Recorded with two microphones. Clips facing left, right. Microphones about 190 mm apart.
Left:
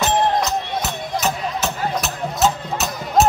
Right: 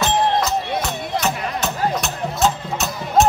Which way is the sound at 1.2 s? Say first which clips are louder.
Left 2 dB; 5° left (ahead or behind).